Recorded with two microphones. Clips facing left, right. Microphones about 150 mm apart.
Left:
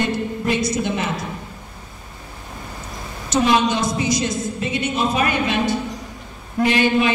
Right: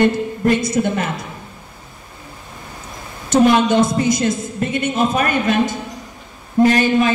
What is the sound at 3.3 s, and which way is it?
A woman's voice, 50° right (ahead or behind).